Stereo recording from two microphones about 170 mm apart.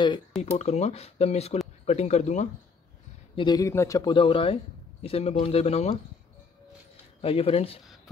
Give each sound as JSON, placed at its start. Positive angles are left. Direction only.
{"t": 0.4, "sound": "speech", "side_deg": 40}
{"t": 3.3, "sound": "speech", "side_deg": 25}
{"t": 7.2, "sound": "speech", "side_deg": 35}